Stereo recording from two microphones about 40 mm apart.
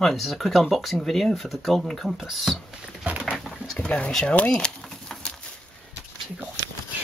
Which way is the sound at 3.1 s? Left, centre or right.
Right.